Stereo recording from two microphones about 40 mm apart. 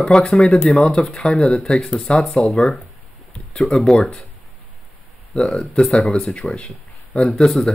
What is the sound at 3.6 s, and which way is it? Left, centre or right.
Speech, left.